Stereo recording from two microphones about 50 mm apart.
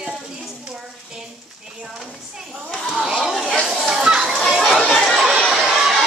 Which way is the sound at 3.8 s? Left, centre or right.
Centre.